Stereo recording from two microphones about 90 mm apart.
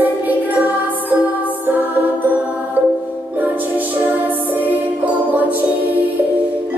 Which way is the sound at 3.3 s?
20° right (ahead or behind).